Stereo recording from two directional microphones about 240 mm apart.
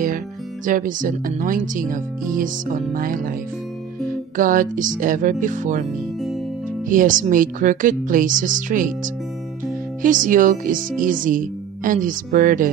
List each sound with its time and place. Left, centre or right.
0.7 s speech: right
4.4 s speech: right
6.9 s speech: right